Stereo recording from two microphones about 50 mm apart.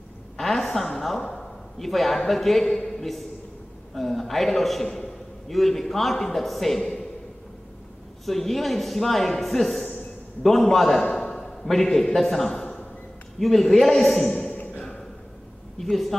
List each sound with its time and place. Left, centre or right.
0.4 s a woman's voice: centre
8.3 s speech: centre
11.1 s a sound: centre
11.6 s a man's voice: centre
14.5 s a sound: left
15.8 s speech: centre